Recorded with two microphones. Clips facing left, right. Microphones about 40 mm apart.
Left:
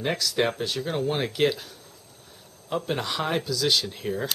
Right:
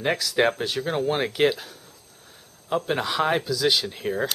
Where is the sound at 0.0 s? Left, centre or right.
Centre.